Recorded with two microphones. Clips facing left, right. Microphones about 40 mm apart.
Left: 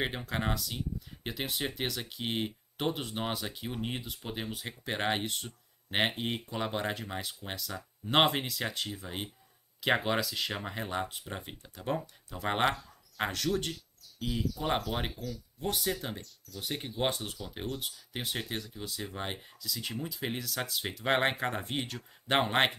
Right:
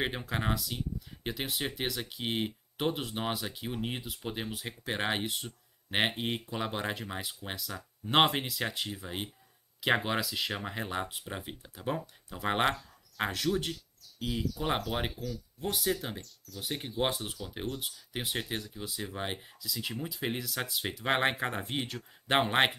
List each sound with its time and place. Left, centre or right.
0.0 s speech: centre